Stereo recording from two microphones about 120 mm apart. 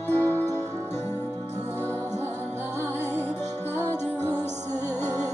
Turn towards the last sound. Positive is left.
turn(degrees=20)  # may be behind; listen again after turning